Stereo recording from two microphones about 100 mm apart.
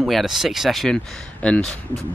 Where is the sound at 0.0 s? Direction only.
Centre (ahead or behind).